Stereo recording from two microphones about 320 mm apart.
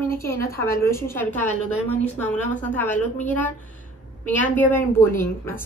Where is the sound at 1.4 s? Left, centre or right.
Right.